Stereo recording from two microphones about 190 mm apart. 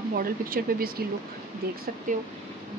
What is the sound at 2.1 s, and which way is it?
Speech, 40° right (ahead or behind).